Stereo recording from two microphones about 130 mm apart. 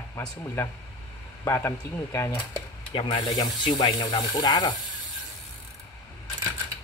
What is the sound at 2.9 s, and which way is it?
Speech, 45° left (ahead or behind).